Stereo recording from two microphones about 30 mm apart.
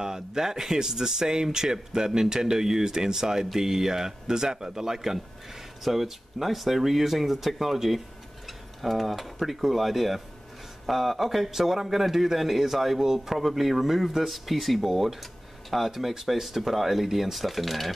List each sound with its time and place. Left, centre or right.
0.0 s speech: centre
8.5 s a sound: centre
9.5 s a man's voice: centre